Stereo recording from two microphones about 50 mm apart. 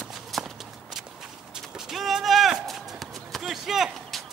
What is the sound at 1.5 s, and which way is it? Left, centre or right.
Clip-clop, centre.